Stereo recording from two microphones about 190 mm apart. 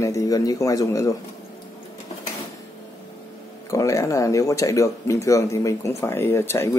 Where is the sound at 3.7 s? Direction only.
15° left (ahead or behind).